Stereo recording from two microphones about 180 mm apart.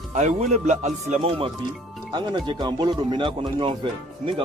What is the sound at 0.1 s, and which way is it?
Speech, 40° right (ahead or behind).